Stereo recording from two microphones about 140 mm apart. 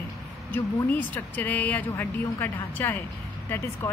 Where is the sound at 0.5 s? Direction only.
15° left (ahead or behind).